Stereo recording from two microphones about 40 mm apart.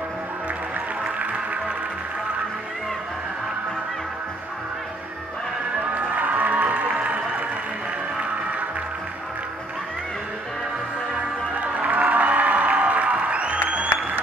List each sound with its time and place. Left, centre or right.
5.9 s music: right
8.2 s music: right
11.5 s music: right